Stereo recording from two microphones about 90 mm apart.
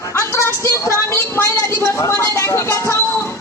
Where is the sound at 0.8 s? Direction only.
30° left (ahead or behind).